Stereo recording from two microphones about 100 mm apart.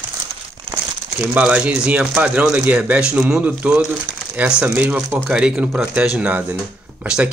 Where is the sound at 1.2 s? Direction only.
10° right (ahead or behind).